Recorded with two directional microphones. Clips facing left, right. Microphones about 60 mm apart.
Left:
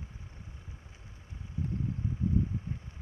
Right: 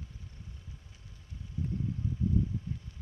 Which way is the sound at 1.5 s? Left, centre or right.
Left.